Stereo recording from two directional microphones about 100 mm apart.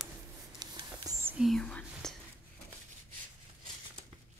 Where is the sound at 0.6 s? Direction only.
40° right (ahead or behind).